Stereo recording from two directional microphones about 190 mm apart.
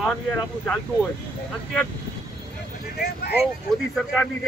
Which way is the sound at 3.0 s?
55° left (ahead or behind).